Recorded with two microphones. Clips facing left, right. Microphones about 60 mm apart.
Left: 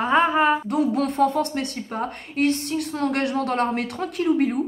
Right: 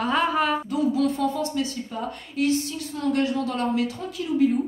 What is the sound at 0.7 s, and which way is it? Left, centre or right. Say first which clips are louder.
Speech: left 1 dB; left.